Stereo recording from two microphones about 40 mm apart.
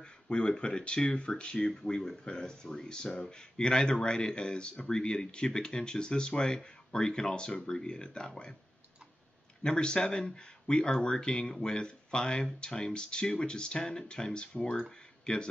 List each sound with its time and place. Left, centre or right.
0.0 s speech: left
1.9 s speech: centre
9.6 s speech: left